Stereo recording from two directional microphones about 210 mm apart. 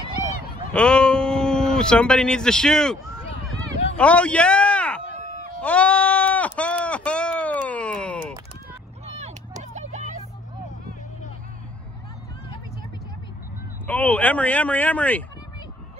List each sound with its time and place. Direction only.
0.7 s speech: 5° left (ahead or behind)
3.9 s a sound: 5° left (ahead or behind)
5.6 s sheep: 5° left (ahead or behind)
9.0 s vehicle: 30° right (ahead or behind)
13.8 s speech: 5° left (ahead or behind)